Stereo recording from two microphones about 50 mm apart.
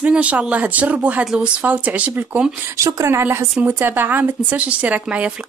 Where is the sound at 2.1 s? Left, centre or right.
Right.